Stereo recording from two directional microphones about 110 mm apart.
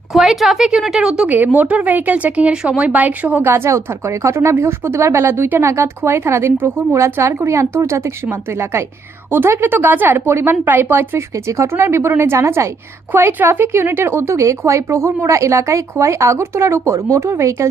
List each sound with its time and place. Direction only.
0.1 s a woman's voice: centre (ahead or behind); by 8.0 s 25° right (ahead or behind)
9.3 s a woman's voice: 20° right (ahead or behind)